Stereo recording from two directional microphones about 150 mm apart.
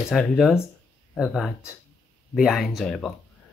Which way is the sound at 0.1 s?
Centre (ahead or behind).